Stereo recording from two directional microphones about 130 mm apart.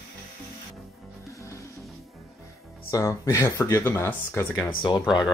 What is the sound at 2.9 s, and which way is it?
Speech, 25° left (ahead or behind).